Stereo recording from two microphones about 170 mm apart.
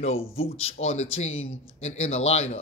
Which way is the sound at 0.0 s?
35° left (ahead or behind).